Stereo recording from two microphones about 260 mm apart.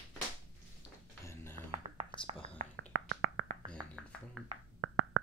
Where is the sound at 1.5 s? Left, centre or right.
Centre.